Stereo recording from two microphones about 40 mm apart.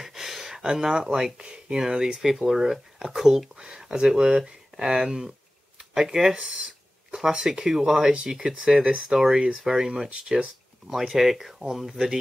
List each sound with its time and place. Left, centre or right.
0.0 s speech: centre
6.3 s a sound: right
7.2 s speech: centre
11.0 s speech: centre